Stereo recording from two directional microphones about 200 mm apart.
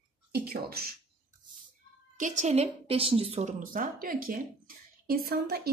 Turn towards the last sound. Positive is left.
turn(degrees=-50)  # may be behind; listen again after turning